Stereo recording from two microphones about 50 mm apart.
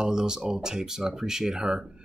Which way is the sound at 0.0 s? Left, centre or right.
Centre.